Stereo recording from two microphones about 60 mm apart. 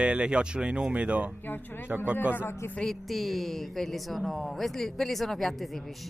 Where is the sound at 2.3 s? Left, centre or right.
Left.